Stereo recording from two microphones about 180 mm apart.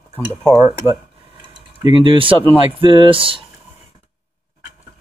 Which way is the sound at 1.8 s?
25° right (ahead or behind).